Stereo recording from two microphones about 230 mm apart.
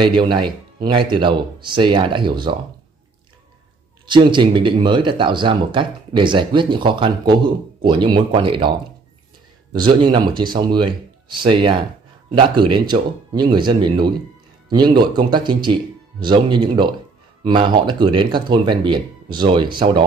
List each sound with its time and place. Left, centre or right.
0.0 s speech: right
4.0 s speech: centre
9.7 s speech: centre